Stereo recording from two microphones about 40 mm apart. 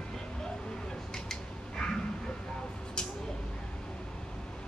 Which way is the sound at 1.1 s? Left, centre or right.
Centre.